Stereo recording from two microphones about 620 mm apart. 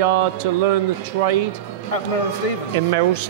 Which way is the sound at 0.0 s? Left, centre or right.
Right.